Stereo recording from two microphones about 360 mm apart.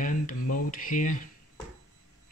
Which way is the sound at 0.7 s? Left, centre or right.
Left.